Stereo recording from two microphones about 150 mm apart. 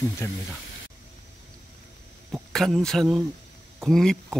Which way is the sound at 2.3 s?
Centre (ahead or behind).